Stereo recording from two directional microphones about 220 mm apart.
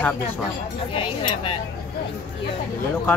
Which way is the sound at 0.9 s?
25° left (ahead or behind).